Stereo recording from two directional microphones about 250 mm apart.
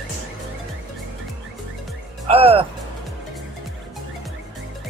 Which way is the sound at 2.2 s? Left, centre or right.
Right.